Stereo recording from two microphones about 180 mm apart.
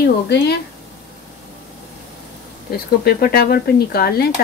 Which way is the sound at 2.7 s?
55° left (ahead or behind).